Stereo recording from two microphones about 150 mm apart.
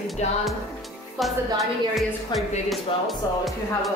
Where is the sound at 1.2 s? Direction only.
Centre (ahead or behind).